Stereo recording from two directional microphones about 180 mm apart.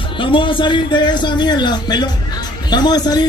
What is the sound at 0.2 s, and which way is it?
Speech, 30° left (ahead or behind).